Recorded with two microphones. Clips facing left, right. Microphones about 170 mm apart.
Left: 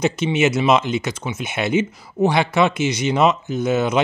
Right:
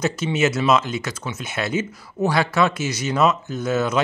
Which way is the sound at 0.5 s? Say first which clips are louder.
Left 2 dB; 20° left (ahead or behind).